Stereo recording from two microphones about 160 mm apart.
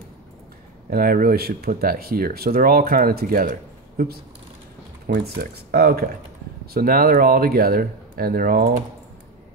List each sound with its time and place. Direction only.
0.8 s speech: 65° right (ahead or behind)
5.0 s speech: 75° right (ahead or behind)